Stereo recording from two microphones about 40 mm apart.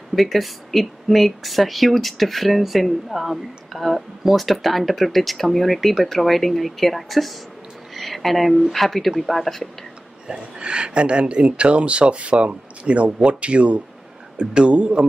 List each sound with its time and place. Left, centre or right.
0.1 s speech: centre
10.2 s speech: right